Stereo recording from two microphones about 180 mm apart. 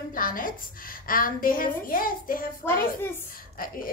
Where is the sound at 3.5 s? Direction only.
50° left (ahead or behind).